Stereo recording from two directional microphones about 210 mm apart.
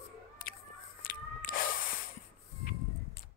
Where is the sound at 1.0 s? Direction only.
40° left (ahead or behind).